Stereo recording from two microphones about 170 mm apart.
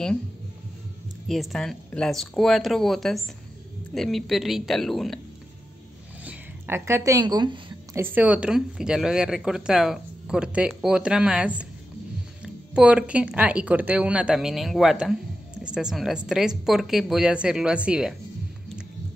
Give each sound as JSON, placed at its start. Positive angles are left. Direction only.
{"t": 1.2, "sound": "speech", "side_deg": 0}
{"t": 6.2, "sound": "speech", "side_deg": -15}
{"t": 7.9, "sound": "speech", "side_deg": -10}
{"t": 12.7, "sound": "speech", "side_deg": -5}